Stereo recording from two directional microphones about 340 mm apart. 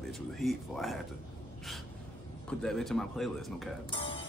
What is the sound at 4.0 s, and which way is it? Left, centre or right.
Music, centre.